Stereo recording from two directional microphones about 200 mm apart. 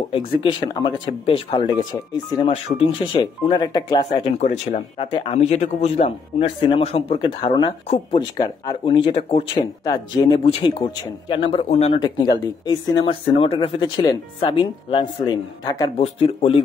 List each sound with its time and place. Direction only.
0.1 s speech: 25° left (ahead or behind)
4.4 s speech: 35° left (ahead or behind)